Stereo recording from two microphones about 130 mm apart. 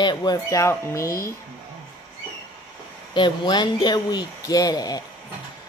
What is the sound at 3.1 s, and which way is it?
Speech, 35° left (ahead or behind).